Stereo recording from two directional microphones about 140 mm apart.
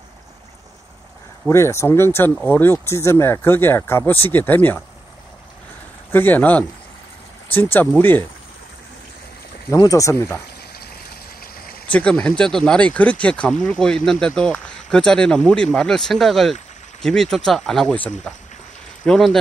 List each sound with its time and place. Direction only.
1.5 s speech: 20° left (ahead or behind)
6.1 s speech: 15° left (ahead or behind)
9.7 s speech: 25° left (ahead or behind)
11.9 s speech: 10° left (ahead or behind)